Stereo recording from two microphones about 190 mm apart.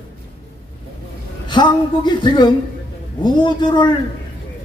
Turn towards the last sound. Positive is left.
turn(degrees=25)  # may be behind; listen again after turning